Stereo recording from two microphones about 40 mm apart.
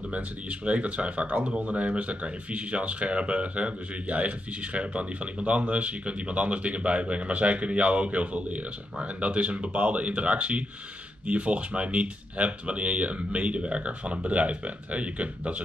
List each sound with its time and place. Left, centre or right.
0.1 s speech: right